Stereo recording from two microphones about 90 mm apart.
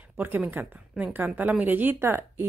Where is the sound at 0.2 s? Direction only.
25° right (ahead or behind).